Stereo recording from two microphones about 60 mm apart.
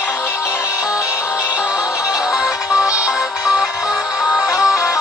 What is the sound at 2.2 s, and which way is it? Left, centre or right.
Music, centre.